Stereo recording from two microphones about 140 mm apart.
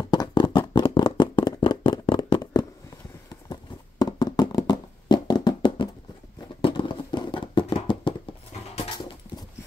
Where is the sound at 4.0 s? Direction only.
30° left (ahead or behind).